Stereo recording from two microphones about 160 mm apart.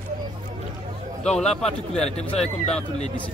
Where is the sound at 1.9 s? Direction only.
40° left (ahead or behind).